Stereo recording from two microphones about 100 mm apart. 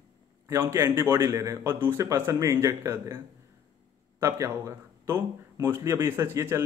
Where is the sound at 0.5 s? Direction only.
30° right (ahead or behind).